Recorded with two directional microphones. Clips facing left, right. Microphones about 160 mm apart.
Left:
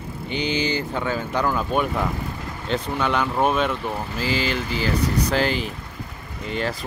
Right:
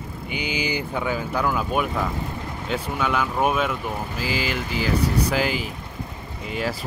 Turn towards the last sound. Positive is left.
turn(degrees=-5)  # may be behind; listen again after turning